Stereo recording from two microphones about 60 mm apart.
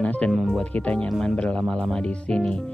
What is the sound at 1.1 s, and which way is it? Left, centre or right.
Speech, centre.